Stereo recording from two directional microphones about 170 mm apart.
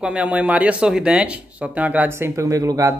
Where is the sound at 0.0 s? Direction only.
5° right (ahead or behind).